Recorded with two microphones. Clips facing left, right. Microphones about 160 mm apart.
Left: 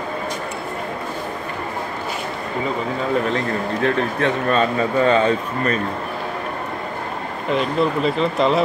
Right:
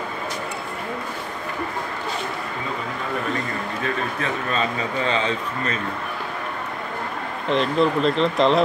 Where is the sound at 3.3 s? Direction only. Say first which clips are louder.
Left 5 dB; 65° left (ahead or behind).